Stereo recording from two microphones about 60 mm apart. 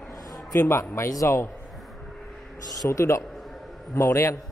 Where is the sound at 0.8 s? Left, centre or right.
Left.